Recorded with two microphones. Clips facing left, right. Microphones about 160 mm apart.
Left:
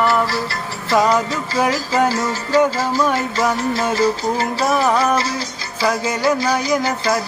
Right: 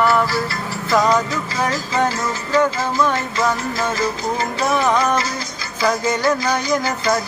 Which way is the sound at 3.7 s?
30° left (ahead or behind).